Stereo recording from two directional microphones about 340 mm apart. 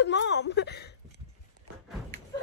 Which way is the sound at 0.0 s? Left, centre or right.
Left.